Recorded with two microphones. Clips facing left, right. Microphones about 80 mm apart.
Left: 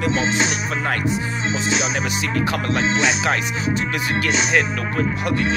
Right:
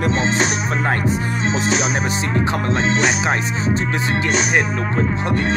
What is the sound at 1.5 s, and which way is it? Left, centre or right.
Music, right.